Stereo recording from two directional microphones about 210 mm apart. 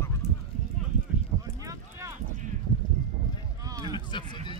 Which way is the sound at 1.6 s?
15° right (ahead or behind).